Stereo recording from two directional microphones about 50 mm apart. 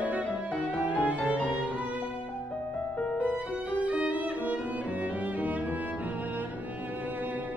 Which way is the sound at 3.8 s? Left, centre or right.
Right.